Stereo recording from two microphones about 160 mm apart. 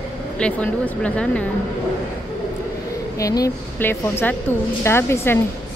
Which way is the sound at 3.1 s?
20° left (ahead or behind).